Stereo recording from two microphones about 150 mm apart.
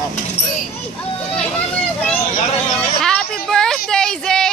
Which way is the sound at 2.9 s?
5° left (ahead or behind).